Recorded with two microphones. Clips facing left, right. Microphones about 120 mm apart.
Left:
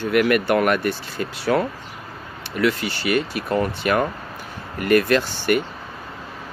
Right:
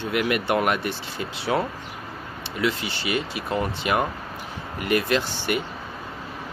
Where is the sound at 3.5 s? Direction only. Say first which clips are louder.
Left 4 dB; 50° left (ahead or behind).